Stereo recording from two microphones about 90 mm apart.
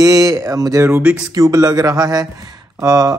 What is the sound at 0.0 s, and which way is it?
A woman's voice, 40° right (ahead or behind).